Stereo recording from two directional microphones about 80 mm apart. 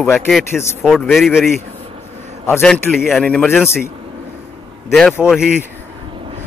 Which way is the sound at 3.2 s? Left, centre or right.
Centre.